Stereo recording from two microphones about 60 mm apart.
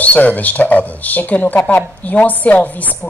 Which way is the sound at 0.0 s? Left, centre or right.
Left.